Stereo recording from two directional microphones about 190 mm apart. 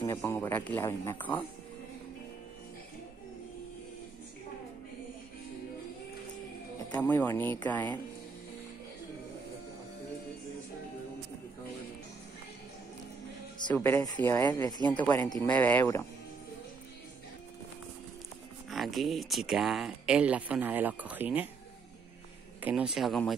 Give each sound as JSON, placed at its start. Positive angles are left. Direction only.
{"t": 0.0, "sound": "speech", "side_deg": 20}
{"t": 7.0, "sound": "speech", "side_deg": 10}
{"t": 13.7, "sound": "speech", "side_deg": 10}
{"t": 14.9, "sound": "speech", "side_deg": 10}
{"t": 18.7, "sound": "speech", "side_deg": 0}
{"t": 22.6, "sound": "speech", "side_deg": -10}